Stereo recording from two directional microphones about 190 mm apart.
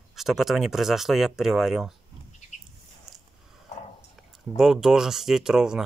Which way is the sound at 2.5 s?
40° left (ahead or behind).